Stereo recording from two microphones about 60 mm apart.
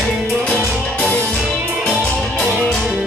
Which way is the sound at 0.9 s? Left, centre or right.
Left.